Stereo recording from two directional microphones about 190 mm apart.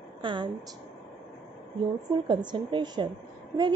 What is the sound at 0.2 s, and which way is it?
Speech, 25° right (ahead or behind).